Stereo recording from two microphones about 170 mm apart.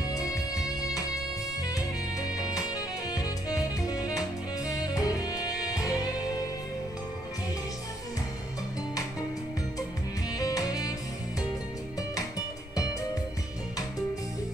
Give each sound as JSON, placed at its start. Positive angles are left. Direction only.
{"t": 0.1, "sound": "music", "side_deg": 20}
{"t": 10.3, "sound": "music", "side_deg": 20}